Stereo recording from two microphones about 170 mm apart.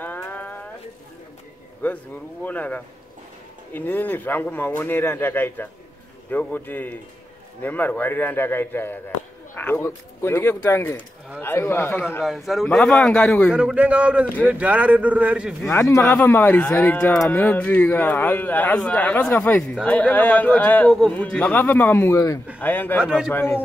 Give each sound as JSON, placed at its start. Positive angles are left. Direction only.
{"t": 0.0, "sound": "music", "side_deg": 10}
{"t": 1.8, "sound": "speech", "side_deg": 10}
{"t": 12.2, "sound": "a man's voice", "side_deg": 0}
{"t": 13.6, "sound": "a man's voice", "side_deg": -5}
{"t": 15.7, "sound": "speech", "side_deg": 15}
{"t": 23.0, "sound": "a man's voice", "side_deg": 0}
{"t": 23.3, "sound": "speech", "side_deg": 10}